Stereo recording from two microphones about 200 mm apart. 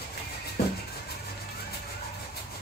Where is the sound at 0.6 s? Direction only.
50° left (ahead or behind).